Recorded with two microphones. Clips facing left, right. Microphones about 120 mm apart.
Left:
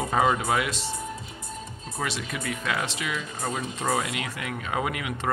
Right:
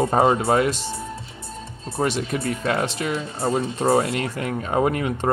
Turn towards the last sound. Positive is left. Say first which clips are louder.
# right 8 dB
turn(degrees=-40)  # may be behind; listen again after turning